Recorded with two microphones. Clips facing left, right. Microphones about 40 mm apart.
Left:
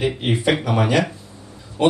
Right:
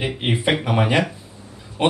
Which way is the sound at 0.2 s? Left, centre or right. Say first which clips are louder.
Left 1 dB; right.